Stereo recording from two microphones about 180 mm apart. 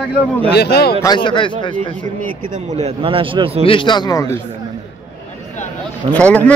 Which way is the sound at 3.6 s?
30° left (ahead or behind).